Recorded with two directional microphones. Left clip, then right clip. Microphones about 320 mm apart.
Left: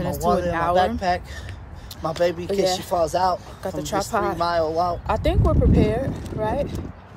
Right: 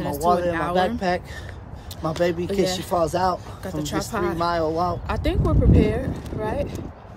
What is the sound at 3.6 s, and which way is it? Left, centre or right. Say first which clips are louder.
Speech: left 3 dB; centre.